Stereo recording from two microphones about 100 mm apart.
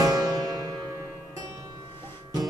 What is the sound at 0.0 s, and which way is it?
Music, 40° right (ahead or behind).